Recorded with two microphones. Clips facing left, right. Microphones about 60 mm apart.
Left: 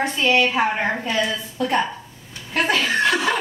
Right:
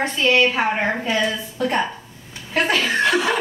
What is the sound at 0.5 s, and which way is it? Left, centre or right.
Speech, centre.